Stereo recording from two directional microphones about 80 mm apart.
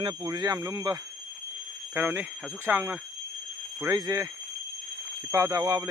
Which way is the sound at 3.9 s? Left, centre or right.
Right.